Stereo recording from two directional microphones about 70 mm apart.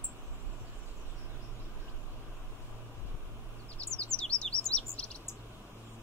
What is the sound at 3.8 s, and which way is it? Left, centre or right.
Chirp, centre.